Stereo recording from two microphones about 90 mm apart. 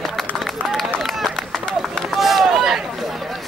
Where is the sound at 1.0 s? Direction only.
Centre (ahead or behind).